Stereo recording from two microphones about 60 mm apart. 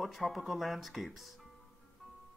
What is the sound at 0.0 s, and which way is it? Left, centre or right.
Speech, centre.